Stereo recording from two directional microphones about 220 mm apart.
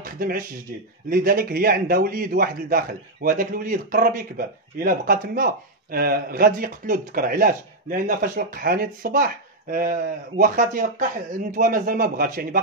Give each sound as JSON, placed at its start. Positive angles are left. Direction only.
{"t": 0.0, "sound": "a man's voice", "side_deg": -40}